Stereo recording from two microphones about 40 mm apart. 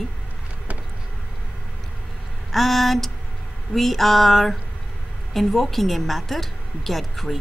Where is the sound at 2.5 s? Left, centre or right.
Centre.